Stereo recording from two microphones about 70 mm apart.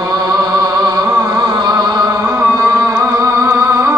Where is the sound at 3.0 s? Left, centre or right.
Right.